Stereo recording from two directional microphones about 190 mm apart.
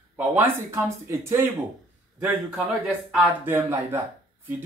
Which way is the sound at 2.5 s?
5° right (ahead or behind).